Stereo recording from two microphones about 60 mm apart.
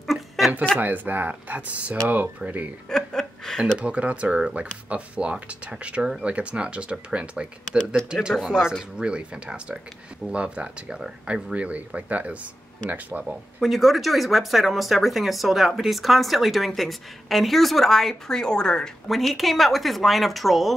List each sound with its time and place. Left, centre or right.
0.0 s a sound: centre
0.7 s speech: right
2.9 s a sound: centre
3.7 s speech: right
7.6 s speech: centre
8.1 s speech: centre
13.2 s speech: centre
19.0 s speech: centre